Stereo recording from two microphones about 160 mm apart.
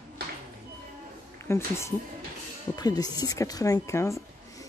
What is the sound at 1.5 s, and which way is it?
Speech, 15° left (ahead or behind).